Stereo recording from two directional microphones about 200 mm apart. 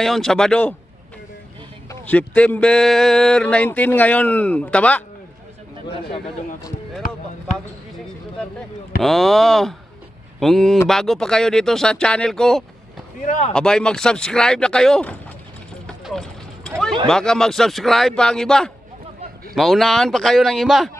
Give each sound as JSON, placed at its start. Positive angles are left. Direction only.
{"t": 0.0, "sound": "speech", "side_deg": 0}
{"t": 1.9, "sound": "speech", "side_deg": 5}
{"t": 5.9, "sound": "a man's voice", "side_deg": 25}
{"t": 9.0, "sound": "speech", "side_deg": 0}
{"t": 13.2, "sound": "speech", "side_deg": 40}
{"t": 13.5, "sound": "speech", "side_deg": 5}
{"t": 15.9, "sound": "boat", "side_deg": 0}
{"t": 17.1, "sound": "speech", "side_deg": 5}